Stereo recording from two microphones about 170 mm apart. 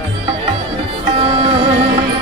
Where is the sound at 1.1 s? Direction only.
30° right (ahead or behind).